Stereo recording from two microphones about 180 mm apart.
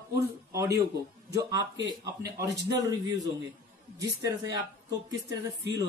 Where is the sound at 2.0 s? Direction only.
65° right (ahead or behind).